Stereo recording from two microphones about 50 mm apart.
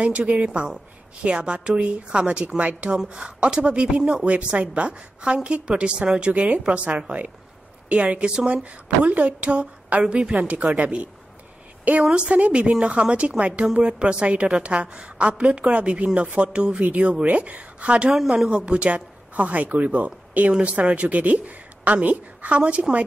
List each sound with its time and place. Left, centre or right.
0.3 s speech: right
18.1 s speech: centre
18.7 s speech: right